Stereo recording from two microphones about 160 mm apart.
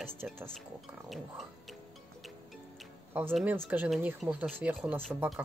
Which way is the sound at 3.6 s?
5° right (ahead or behind).